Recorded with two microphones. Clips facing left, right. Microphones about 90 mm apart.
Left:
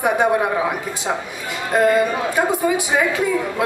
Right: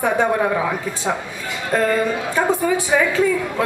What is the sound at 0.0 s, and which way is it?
A man's voice, 15° left (ahead or behind).